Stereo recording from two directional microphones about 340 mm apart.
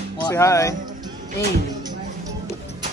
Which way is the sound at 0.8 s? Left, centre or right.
Centre.